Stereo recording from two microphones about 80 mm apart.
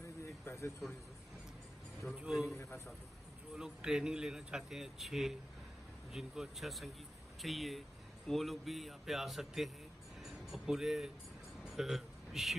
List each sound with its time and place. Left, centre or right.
0.2 s a sound: left
2.0 s speech: centre
2.5 s a man's voice: left
3.5 s speech: centre
10.2 s music: centre
11.6 s a sound: centre